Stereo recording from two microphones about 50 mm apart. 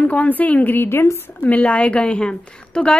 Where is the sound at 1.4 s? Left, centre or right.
Left.